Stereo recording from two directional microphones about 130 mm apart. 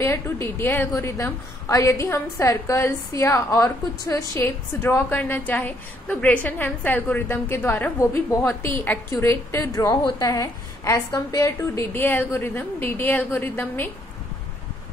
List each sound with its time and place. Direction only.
0.0 s a woman's voice: 20° left (ahead or behind)